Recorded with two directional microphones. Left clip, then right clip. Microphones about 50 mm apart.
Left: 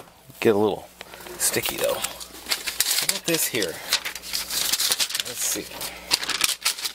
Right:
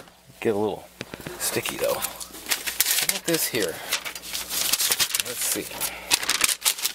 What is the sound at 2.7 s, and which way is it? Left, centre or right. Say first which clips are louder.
Typewriter: even; right.